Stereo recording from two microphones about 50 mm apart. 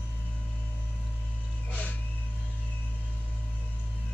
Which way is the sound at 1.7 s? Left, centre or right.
Left.